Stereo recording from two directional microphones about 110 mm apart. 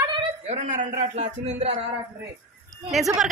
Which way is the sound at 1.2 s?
90° right.